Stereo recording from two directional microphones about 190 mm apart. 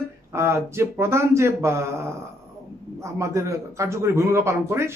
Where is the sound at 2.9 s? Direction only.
15° right (ahead or behind).